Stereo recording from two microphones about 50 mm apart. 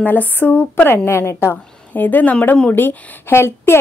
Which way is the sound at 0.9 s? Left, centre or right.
Left.